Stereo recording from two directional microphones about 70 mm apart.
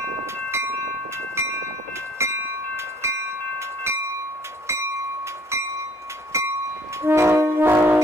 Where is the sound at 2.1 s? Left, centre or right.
Right.